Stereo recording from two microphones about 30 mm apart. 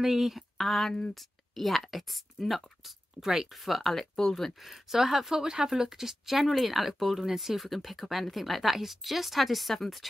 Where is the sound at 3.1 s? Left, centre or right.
Centre.